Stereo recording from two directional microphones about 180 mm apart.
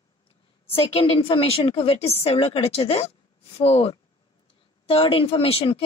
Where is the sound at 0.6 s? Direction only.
30° left (ahead or behind).